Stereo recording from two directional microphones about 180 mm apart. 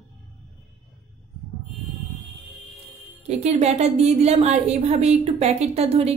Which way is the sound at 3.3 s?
35° right (ahead or behind).